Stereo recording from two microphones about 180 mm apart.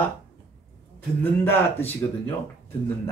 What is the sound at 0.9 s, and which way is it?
Speech, 10° left (ahead or behind).